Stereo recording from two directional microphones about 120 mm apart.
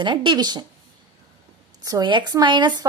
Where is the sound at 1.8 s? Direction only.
35° right (ahead or behind).